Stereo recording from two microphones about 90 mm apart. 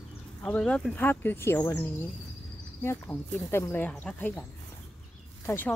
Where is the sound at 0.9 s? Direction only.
20° left (ahead or behind).